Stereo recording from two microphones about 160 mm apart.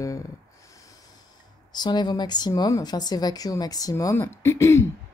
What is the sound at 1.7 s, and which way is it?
Speech, 25° left (ahead or behind).